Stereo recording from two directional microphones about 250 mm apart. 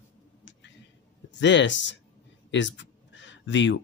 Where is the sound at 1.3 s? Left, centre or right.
Left.